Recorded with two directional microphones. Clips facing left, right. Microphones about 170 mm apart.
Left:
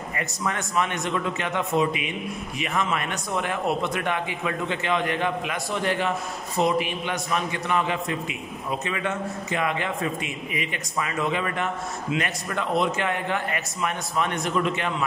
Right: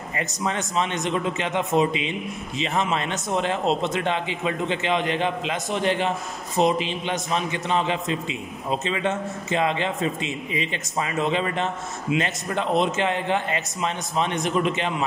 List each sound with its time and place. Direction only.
0.1 s a man's voice: 25° right (ahead or behind)